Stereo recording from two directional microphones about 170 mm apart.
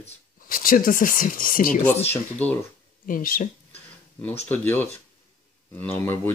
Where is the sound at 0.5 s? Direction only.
55° left (ahead or behind).